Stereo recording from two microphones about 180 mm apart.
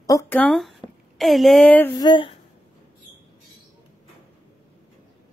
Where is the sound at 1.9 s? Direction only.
25° left (ahead or behind).